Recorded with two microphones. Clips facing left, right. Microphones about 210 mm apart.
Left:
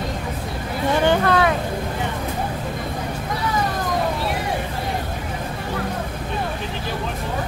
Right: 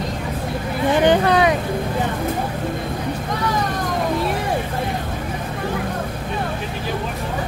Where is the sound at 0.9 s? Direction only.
15° right (ahead or behind).